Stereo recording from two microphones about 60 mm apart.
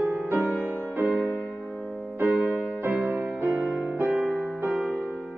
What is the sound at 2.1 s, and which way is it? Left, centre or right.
Music, right.